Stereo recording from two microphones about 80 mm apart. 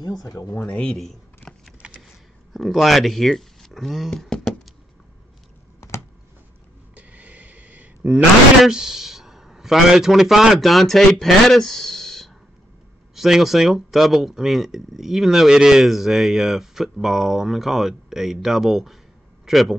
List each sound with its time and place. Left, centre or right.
0.0 s speech: left
0.7 s speech: centre
1.8 s computer keyboard: centre
2.5 s speech: centre
7.0 s a sound: centre
8.6 s a man's voice: centre